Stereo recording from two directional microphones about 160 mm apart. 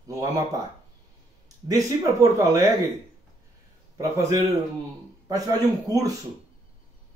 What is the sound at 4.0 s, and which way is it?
Speech, 20° right (ahead or behind).